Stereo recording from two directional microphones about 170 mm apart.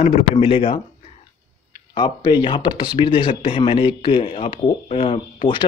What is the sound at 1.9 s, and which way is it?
Speech, 25° left (ahead or behind).